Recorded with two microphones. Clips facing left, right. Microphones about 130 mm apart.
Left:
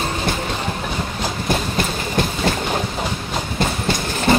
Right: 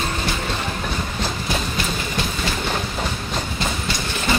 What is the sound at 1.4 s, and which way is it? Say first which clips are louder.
Train: left 4 dB; 50° left (ahead or behind).